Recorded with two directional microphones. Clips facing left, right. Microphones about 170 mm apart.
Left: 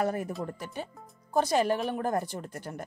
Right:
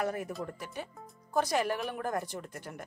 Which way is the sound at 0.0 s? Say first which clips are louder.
Left 4 dB; 35° left (ahead or behind).